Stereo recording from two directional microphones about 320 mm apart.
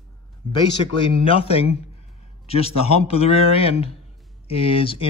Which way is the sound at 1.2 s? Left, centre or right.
Centre.